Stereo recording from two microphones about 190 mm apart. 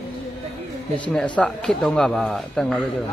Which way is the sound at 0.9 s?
5° left (ahead or behind).